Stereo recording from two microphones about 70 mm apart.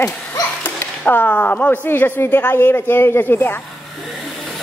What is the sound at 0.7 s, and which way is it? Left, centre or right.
Speech, left.